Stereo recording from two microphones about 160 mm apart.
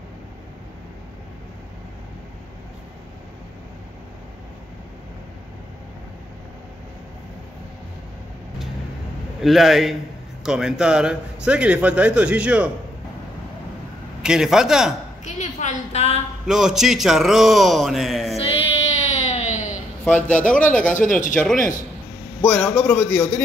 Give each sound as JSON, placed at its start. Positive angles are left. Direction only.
{"t": 9.4, "sound": "a man's voice", "side_deg": 0}
{"t": 14.2, "sound": "speech", "side_deg": -5}
{"t": 15.2, "sound": "a woman's voice", "side_deg": 50}
{"t": 16.4, "sound": "speech", "side_deg": 0}
{"t": 18.3, "sound": "child singing", "side_deg": 40}
{"t": 20.1, "sound": "a man's voice", "side_deg": 10}
{"t": 22.4, "sound": "a man's voice", "side_deg": 10}